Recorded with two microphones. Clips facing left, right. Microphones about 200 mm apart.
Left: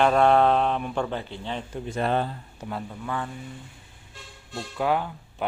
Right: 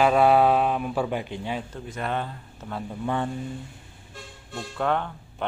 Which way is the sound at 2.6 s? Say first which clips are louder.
Left 1 dB; 10° left (ahead or behind).